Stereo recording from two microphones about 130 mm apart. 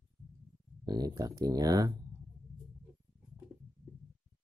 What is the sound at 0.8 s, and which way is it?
Speech, 30° right (ahead or behind).